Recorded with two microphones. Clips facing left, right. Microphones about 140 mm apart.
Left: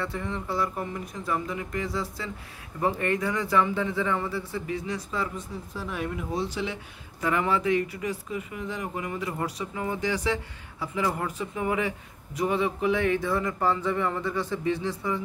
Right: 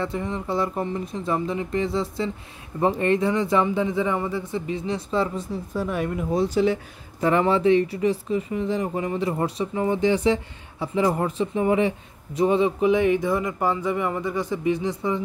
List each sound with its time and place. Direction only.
0.0 s speech: 20° right (ahead or behind)
5.8 s speech: 50° right (ahead or behind); by 15.2 s 20° right (ahead or behind)